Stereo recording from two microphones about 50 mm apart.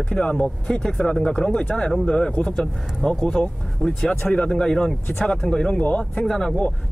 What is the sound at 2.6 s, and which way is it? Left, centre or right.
Speech, centre.